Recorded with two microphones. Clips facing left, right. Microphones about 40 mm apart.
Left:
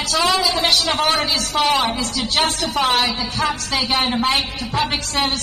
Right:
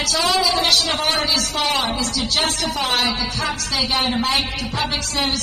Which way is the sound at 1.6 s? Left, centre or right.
Centre.